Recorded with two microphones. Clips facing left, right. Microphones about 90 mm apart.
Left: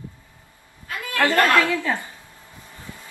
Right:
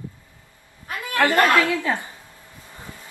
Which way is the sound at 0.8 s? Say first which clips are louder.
Right 1 dB; 20° right (ahead or behind).